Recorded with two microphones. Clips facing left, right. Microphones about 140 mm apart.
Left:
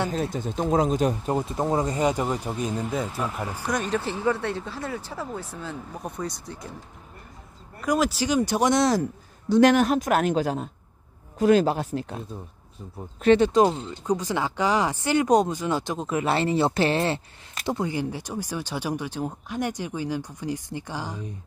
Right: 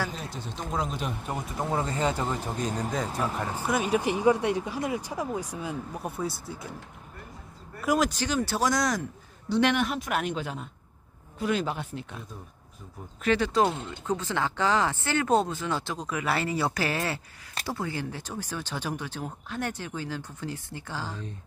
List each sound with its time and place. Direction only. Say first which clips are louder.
0.1 s speech: left 10 dB; 50° left (ahead or behind)
1.3 s speech: left 6 dB; 25° left (ahead or behind); by 3.4 s 5° left (ahead or behind)
3.5 s speech: right 1 dB; 10° right (ahead or behind)
7.8 s speech: left 2 dB; centre (ahead or behind)
8.4 s speech: left 5 dB; 20° left (ahead or behind)
9.5 s a woman's voice: left 7 dB; 40° left (ahead or behind)
13.2 s speech: left 6 dB; 25° left (ahead or behind)